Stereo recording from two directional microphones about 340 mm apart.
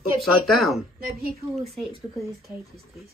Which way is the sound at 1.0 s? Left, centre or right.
Right.